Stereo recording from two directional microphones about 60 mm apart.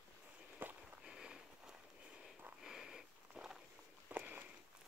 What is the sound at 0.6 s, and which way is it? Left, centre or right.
Walk, right.